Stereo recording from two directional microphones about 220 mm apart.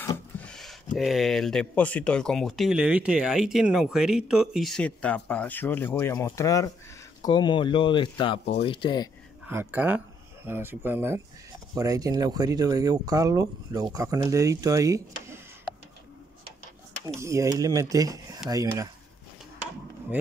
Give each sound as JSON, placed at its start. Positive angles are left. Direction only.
{"t": 0.4, "sound": "a sound", "side_deg": 0}
{"t": 0.9, "sound": "speech", "side_deg": 0}
{"t": 9.5, "sound": "speech", "side_deg": -10}
{"t": 17.0, "sound": "speech", "side_deg": -15}